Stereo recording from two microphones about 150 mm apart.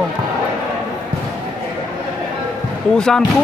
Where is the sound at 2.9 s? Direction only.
5° left (ahead or behind).